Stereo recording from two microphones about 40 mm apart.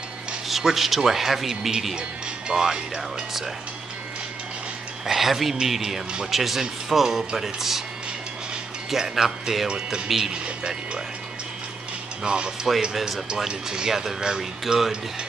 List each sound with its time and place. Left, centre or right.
0.5 s speech: centre
2.0 s speech: centre
5.0 s a man's voice: centre
8.9 s a man's voice: centre
10.3 s speech: right
12.2 s speech: right
12.9 s speech: centre
13.5 s a man's voice: centre